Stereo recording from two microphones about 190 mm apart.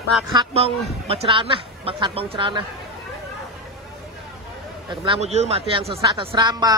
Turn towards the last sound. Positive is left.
turn(degrees=-20)  # may be behind; listen again after turning